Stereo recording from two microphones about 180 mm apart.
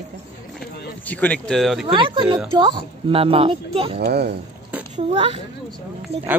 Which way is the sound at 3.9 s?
65° right (ahead or behind).